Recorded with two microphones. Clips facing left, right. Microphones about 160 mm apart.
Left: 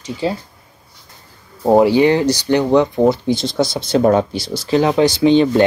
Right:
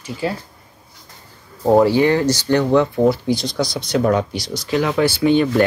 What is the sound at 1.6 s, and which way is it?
Speech, 15° left (ahead or behind).